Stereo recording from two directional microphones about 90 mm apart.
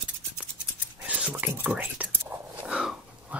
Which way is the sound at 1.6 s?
20° right (ahead or behind).